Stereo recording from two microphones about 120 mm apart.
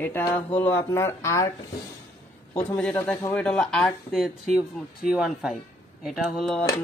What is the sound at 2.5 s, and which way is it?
Mantra, 10° left (ahead or behind).